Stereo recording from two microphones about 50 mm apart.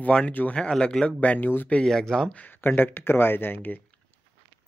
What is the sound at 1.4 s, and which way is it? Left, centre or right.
Speech, left.